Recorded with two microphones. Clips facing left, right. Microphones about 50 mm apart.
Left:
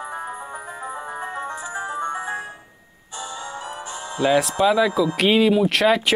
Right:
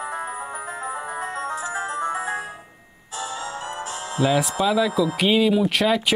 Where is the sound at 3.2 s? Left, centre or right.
Right.